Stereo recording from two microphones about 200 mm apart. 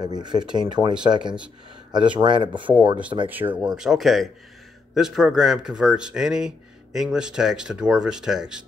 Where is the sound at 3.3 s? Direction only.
10° right (ahead or behind).